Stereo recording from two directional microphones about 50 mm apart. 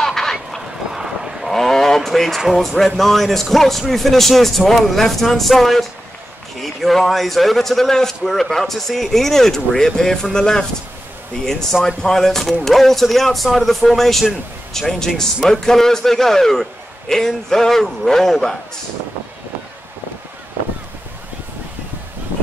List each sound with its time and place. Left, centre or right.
0.0 s a sound: centre
0.9 s cattle: centre
1.5 s sheep: centre
3.0 s a man's voice: centre